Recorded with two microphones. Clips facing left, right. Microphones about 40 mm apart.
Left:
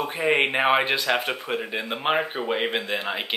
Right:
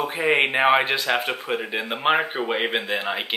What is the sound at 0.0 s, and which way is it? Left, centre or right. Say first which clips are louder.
Speech: right 1 dB; centre.